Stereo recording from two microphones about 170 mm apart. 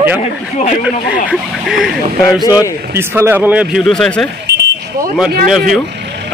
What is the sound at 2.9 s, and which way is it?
Speech, 15° right (ahead or behind).